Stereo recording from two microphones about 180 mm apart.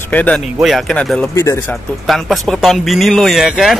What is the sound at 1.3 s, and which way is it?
Mantra, 15° left (ahead or behind).